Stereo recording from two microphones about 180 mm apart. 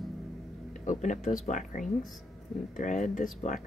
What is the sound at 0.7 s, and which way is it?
Speech, 45° left (ahead or behind).